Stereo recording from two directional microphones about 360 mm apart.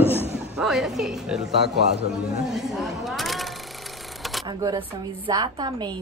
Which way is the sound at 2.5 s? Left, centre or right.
Centre.